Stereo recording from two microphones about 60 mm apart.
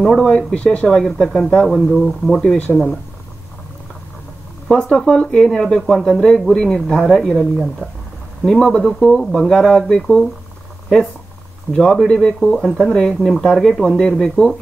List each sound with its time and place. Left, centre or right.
0.2 s speech: centre
0.8 s speech: centre
4.9 s speech: centre
8.5 s speech: centre
10.0 s speech: centre
11.7 s speech: centre